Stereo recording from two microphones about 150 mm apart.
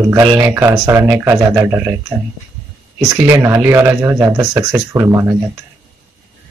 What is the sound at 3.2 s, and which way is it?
Speech, 20° right (ahead or behind).